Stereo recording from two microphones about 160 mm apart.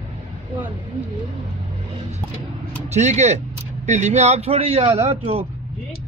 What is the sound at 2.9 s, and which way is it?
A man's voice, 45° right (ahead or behind).